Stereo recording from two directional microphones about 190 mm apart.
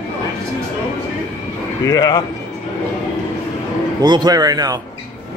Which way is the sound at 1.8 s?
20° left (ahead or behind).